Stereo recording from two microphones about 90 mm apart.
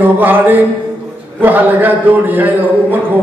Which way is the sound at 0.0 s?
20° right (ahead or behind).